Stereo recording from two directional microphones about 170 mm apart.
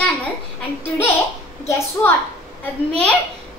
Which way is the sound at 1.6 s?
15° left (ahead or behind).